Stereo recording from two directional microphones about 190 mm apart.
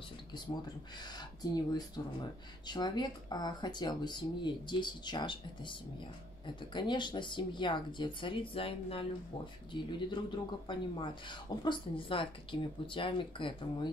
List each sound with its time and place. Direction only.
0.9 s speech: 20° left (ahead or behind)